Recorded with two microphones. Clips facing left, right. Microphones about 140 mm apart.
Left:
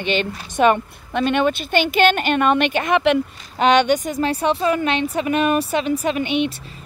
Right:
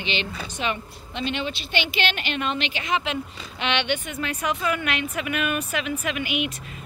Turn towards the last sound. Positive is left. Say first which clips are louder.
# left 7 dB
turn(degrees=30)  # may be behind; listen again after turning